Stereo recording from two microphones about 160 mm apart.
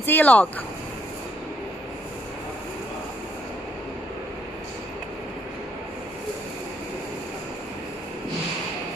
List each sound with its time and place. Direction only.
0.0 s speech: 10° left (ahead or behind)